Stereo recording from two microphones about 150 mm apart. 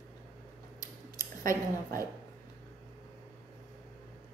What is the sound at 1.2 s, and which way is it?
Speech, 20° left (ahead or behind).